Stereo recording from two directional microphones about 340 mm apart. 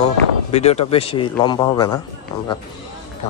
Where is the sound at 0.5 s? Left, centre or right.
Centre.